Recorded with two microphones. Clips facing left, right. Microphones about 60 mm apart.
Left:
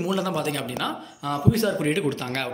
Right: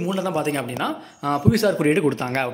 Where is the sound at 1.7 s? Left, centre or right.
Right.